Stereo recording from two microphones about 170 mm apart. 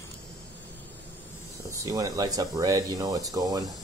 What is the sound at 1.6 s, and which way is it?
Speech, 20° right (ahead or behind).